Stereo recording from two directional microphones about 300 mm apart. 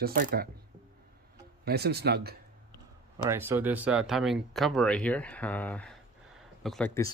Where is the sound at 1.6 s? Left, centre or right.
Right.